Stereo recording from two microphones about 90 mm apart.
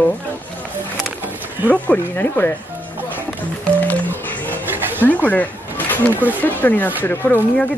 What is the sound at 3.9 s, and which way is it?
Music, 20° left (ahead or behind).